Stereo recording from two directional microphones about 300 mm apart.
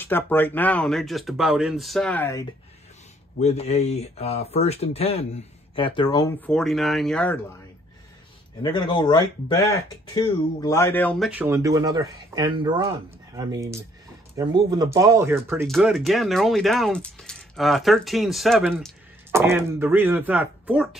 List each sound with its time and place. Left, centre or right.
0.0 s speech: centre
3.3 s speech: left; by 7.3 s centre
8.6 s speech: centre